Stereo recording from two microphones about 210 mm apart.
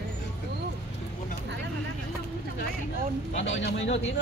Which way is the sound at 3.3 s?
60° left (ahead or behind).